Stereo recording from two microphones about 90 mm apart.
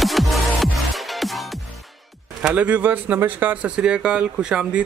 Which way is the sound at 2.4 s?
15° right (ahead or behind).